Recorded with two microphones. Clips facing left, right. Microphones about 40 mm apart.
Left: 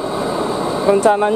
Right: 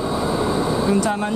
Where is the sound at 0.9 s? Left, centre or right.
Left.